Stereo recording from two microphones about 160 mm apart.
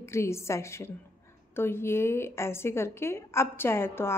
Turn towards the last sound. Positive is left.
turn(degrees=15)  # may be behind; listen again after turning